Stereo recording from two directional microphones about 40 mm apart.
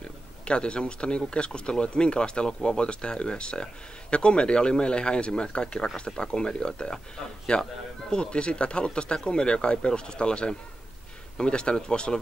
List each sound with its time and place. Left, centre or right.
0.5 s speech: left